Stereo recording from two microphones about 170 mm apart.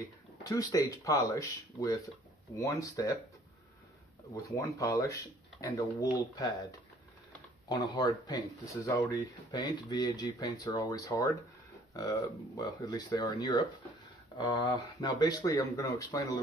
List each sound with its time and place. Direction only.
0.4 s speech: 20° left (ahead or behind)
4.3 s speech: 20° left (ahead or behind)
7.6 s speech: 25° left (ahead or behind)